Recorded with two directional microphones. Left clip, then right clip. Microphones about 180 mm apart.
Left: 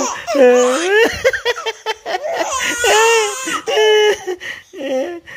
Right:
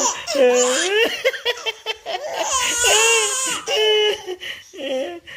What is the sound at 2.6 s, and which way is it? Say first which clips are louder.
Baby cry: left 4 dB; 45° left (ahead or behind).